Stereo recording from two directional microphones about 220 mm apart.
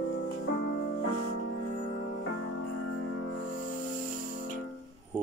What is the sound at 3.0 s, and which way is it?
Music, 55° left (ahead or behind).